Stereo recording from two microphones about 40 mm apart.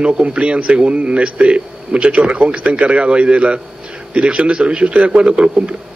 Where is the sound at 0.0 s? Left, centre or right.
Right.